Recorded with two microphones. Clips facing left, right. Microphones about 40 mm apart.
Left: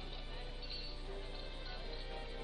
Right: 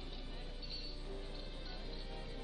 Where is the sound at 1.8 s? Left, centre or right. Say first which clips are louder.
Left 2 dB; centre.